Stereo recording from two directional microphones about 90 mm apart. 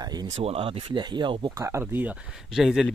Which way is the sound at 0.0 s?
50° right (ahead or behind).